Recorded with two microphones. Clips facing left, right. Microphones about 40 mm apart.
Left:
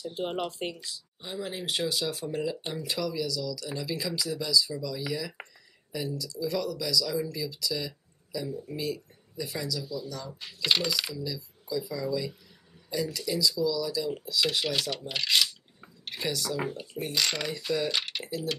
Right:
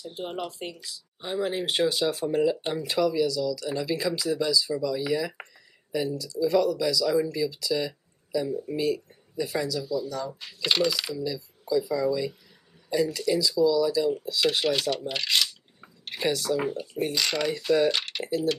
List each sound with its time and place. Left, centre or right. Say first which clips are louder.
0.0 s speech: left 1 dB; centre
1.2 s speech: right 7 dB; right
10.4 s speech: right 2 dB; centre
11.1 s speech: right 5 dB; centre
15.0 s camera: right 1 dB; centre
16.2 s speech: right 6 dB; right
16.7 s speech: right 4 dB; centre
17.9 s typing: right 1 dB; centre